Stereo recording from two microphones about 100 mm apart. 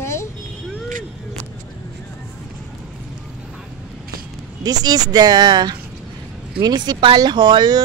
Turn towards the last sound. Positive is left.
turn(degrees=-45)  # may be behind; listen again after turning